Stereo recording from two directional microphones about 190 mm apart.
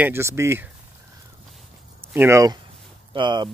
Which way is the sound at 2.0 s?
10° right (ahead or behind).